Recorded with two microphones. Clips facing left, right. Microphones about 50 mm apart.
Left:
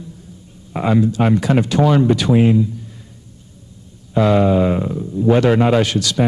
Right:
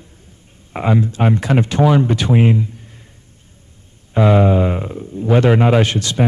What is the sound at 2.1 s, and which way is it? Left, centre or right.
Speech, right.